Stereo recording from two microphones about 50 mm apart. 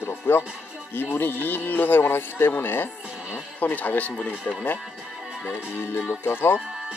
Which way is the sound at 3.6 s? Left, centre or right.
Left.